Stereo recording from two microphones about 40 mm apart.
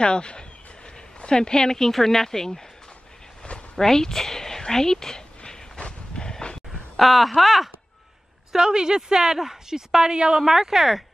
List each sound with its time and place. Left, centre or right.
0.0 s speech: left
3.7 s a sound: centre
7.0 s speech: centre
8.5 s speech: centre
10.4 s speech: centre